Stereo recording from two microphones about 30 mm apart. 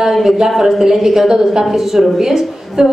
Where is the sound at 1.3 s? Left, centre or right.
Right.